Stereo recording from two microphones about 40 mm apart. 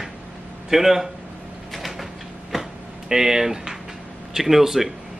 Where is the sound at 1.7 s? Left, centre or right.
Centre.